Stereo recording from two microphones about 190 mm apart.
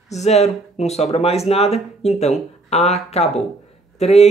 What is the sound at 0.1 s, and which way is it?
Speech, 35° left (ahead or behind).